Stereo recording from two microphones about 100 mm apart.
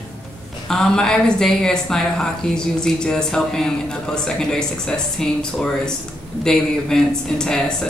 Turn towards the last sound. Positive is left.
turn(degrees=5)  # may be behind; listen again after turning